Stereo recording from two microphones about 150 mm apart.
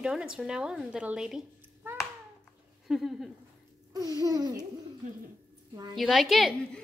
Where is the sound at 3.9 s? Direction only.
25° right (ahead or behind).